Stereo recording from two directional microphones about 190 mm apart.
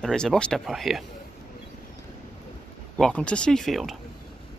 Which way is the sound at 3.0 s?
5° left (ahead or behind).